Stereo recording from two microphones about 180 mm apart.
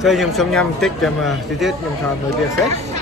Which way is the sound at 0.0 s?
Centre (ahead or behind).